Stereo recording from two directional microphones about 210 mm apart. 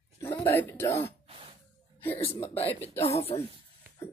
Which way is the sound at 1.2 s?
25° right (ahead or behind).